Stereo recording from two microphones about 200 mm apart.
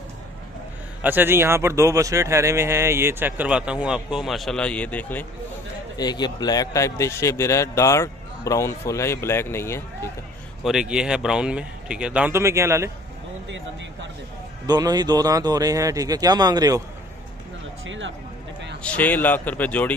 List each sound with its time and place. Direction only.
1.0 s speech: 10° right (ahead or behind); by 5.2 s 5° left (ahead or behind)
5.9 s speech: 20° left (ahead or behind)
10.6 s speech: 5° right (ahead or behind)
14.7 s speech: 20° right (ahead or behind)
17.8 s speech: 70° right (ahead or behind)
18.8 s speech: 10° left (ahead or behind)